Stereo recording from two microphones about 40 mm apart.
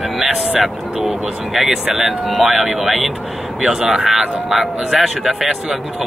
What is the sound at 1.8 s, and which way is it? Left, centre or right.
Speech, centre.